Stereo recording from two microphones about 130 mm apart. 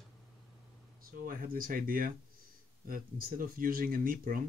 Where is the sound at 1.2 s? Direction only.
90° right.